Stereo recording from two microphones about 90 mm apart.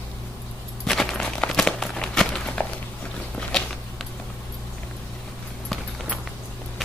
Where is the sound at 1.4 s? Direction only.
5° left (ahead or behind).